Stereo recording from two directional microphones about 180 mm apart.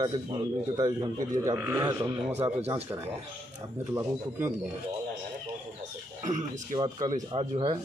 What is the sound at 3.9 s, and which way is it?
Speech, 15° right (ahead or behind).